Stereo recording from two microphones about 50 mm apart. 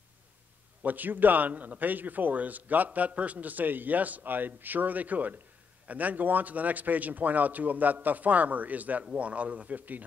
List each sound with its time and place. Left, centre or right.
0.8 s a man's voice: right